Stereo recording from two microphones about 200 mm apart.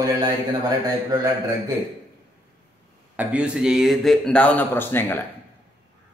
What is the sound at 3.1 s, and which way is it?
A man's voice, 5° right (ahead or behind).